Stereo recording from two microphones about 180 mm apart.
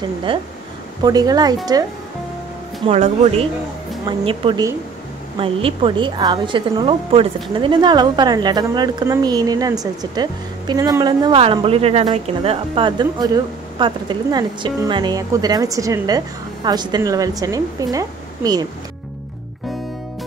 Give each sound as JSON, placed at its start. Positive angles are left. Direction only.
{"t": 0.3, "sound": "a woman's voice", "side_deg": -30}
{"t": 2.9, "sound": "a woman's voice", "side_deg": -35}